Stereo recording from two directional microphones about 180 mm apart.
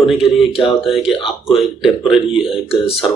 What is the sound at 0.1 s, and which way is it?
Speech, centre (ahead or behind).